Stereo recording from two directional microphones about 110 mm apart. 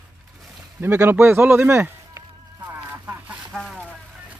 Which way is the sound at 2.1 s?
30° right (ahead or behind).